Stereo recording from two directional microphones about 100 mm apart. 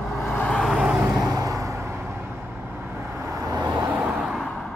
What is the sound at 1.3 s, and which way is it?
Vehicle, 35° right (ahead or behind).